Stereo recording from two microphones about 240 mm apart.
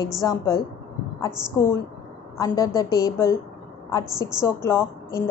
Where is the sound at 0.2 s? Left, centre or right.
Centre.